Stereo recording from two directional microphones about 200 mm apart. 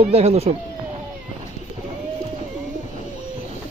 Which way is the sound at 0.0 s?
30° right (ahead or behind).